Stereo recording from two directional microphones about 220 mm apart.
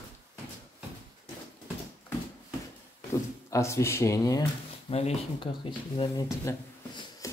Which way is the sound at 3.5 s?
10° left (ahead or behind).